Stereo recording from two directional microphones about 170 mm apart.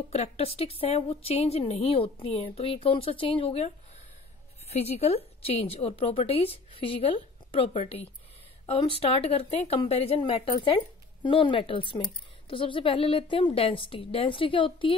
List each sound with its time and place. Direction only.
0.1 s a woman's voice: 40° left (ahead or behind)